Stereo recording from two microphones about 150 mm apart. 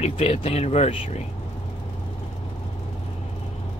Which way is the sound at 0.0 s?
40° left (ahead or behind).